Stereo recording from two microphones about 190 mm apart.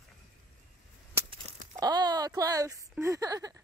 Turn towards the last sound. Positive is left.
turn(degrees=-20)  # may be behind; listen again after turning